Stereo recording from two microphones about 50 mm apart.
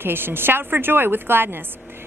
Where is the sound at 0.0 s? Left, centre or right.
Right.